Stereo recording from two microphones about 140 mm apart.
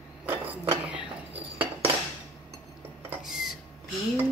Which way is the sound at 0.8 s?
10° right (ahead or behind).